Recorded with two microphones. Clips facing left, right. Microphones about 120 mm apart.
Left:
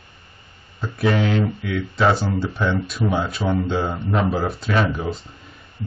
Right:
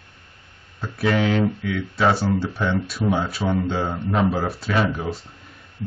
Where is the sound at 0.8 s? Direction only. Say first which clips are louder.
Left 1 dB; centre (ahead or behind).